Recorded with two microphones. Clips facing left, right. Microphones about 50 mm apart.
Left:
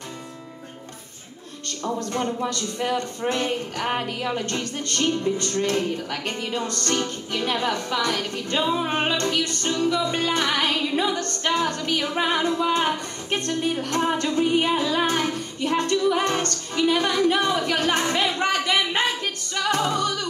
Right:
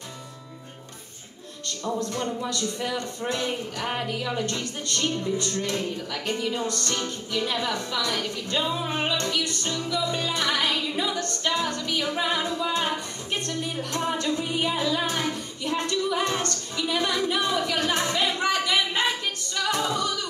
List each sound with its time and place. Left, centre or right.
2.0 s music: left
4.4 s speech: left
19.5 s music: left